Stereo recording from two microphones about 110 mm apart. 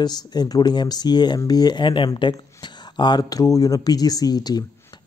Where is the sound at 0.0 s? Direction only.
40° left (ahead or behind).